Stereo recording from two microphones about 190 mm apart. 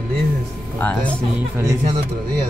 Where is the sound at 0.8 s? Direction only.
5° left (ahead or behind).